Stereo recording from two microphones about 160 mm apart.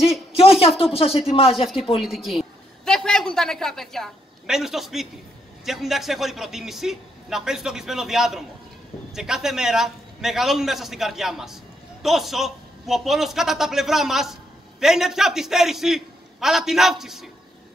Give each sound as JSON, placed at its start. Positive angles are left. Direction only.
{"t": 0.9, "sound": "speech", "side_deg": 35}
{"t": 2.0, "sound": "a woman's voice", "side_deg": 0}